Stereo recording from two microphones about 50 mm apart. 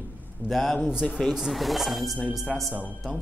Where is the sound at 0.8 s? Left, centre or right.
Centre.